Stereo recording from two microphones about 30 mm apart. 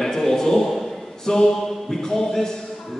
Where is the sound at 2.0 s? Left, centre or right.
Centre.